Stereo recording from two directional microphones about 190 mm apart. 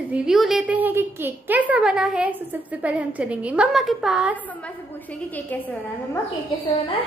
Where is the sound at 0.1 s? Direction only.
5° right (ahead or behind).